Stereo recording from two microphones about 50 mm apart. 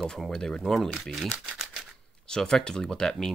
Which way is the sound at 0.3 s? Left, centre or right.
Centre.